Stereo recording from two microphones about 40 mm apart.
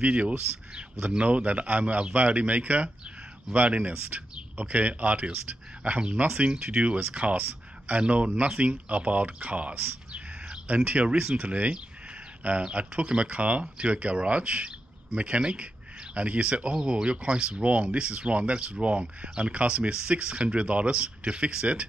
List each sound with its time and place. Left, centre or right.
0.0 s speech: right
10.8 s speech: right
11.3 s speech: right